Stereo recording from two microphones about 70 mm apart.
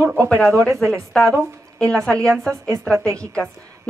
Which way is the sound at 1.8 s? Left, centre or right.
Centre.